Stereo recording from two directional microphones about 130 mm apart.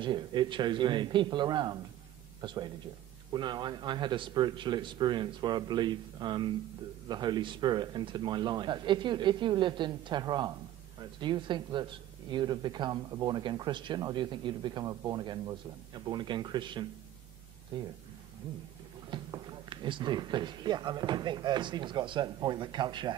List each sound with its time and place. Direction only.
0.0 s speech: 35° right (ahead or behind)
19.0 s speech: 35° right (ahead or behind)